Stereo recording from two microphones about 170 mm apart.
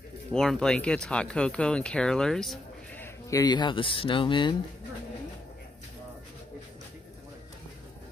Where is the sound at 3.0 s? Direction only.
20° left (ahead or behind).